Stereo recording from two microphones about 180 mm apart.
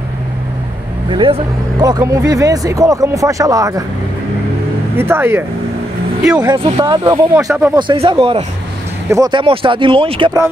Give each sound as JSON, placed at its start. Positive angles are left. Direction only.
{"t": 1.1, "sound": "speech", "side_deg": -25}
{"t": 4.9, "sound": "speech", "side_deg": -10}
{"t": 6.4, "sound": "speech", "side_deg": -20}
{"t": 7.4, "sound": "speech", "side_deg": -10}
{"t": 7.7, "sound": "speech", "side_deg": -25}